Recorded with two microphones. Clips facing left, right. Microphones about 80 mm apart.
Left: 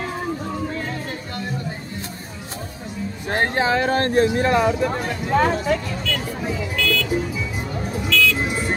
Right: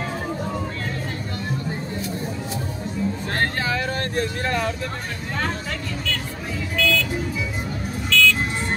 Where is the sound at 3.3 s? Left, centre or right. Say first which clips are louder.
Left 8 dB; left.